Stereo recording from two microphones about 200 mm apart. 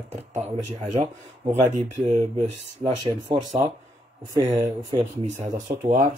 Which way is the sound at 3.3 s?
20° right (ahead or behind).